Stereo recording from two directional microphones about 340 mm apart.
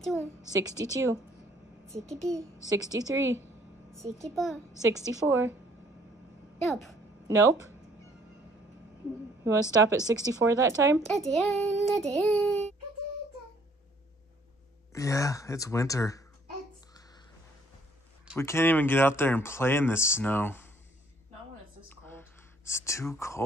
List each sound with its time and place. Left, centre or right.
0.0 s a woman's voice: centre
0.5 s speech: centre
2.0 s child singing: centre
2.7 s speech: centre
4.2 s child singing: centre
4.8 s speech: centre
6.6 s child singing: centre
7.2 s speech: centre
9.4 s speech: centre
11.1 s child singing: centre
14.9 s speech: centre
18.4 s speech: centre
22.7 s speech: centre